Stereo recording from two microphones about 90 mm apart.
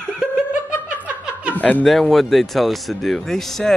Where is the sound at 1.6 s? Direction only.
20° left (ahead or behind).